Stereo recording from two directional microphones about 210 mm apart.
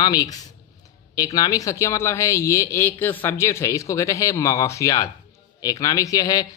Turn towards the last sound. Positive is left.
turn(degrees=20)  # may be behind; listen again after turning